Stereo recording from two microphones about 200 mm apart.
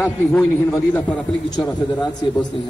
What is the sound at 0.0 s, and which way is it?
A man's voice, 5° left (ahead or behind).